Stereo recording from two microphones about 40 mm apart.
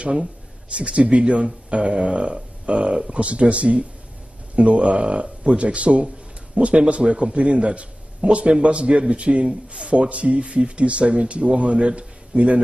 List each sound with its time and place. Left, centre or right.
0.7 s speech: right